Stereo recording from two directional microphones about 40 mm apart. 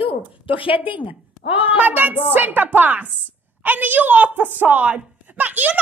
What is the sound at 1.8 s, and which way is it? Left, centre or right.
A woman's voice, right.